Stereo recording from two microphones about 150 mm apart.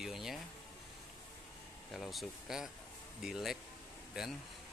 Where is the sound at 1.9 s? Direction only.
Centre (ahead or behind).